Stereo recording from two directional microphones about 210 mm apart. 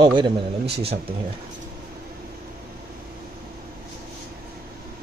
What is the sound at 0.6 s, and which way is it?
Speech, 50° right (ahead or behind).